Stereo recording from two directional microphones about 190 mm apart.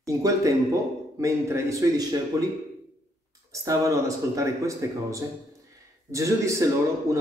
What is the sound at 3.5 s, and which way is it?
A man's voice, 15° right (ahead or behind).